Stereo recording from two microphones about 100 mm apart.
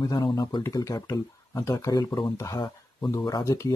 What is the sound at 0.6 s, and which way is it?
Speech, 30° left (ahead or behind).